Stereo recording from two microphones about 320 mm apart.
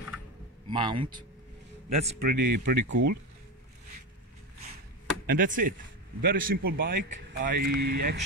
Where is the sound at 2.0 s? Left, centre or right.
Right.